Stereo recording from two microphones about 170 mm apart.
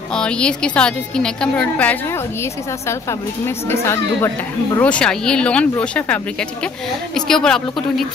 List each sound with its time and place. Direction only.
0.1 s a woman's voice: 5° left (ahead or behind)